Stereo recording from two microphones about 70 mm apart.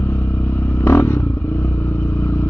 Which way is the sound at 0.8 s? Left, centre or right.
Left.